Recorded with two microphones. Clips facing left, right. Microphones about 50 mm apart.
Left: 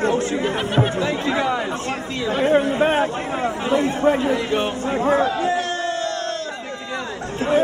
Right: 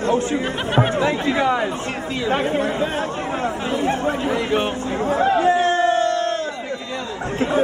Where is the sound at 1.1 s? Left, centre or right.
Centre.